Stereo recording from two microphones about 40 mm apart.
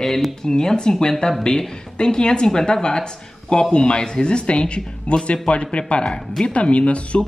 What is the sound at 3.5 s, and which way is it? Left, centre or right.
Speech, left.